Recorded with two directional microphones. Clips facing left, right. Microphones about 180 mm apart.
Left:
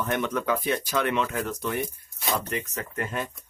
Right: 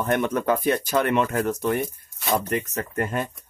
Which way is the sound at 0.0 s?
50° right (ahead or behind).